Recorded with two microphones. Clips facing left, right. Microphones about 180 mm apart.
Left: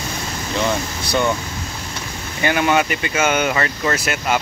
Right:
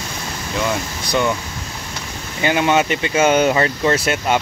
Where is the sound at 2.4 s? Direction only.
20° right (ahead or behind).